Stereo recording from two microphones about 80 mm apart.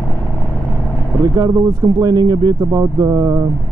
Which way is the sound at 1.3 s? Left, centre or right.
Right.